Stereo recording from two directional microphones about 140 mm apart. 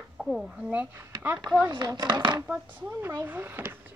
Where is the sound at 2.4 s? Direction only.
10° right (ahead or behind).